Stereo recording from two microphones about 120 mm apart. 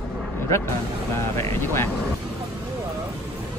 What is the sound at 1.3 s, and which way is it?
Speech, 20° left (ahead or behind).